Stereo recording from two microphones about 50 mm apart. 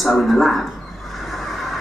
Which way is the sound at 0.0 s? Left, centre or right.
Centre.